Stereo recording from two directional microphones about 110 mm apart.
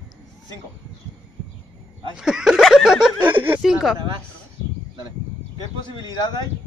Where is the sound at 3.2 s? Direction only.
15° right (ahead or behind).